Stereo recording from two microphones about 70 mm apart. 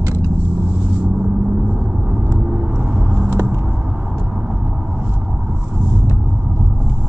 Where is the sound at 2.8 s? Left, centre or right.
Right.